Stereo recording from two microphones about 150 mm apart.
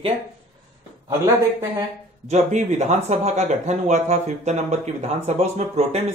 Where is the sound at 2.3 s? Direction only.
50° right (ahead or behind).